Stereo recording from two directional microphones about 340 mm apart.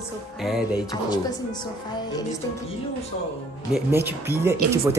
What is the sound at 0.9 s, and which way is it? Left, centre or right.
Speech, centre.